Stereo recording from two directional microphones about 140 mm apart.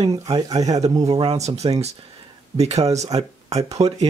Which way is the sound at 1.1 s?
50° right (ahead or behind).